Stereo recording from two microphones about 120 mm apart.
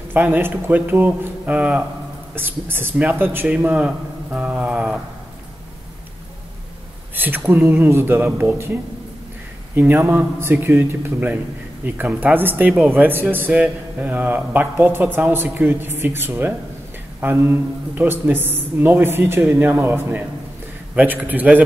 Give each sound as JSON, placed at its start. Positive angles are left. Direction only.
{"t": 0.1, "sound": "speech", "side_deg": -15}
{"t": 7.2, "sound": "speech", "side_deg": -15}
{"t": 9.8, "sound": "speech", "side_deg": -15}